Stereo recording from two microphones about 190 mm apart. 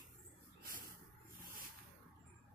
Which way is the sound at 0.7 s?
50° right (ahead or behind).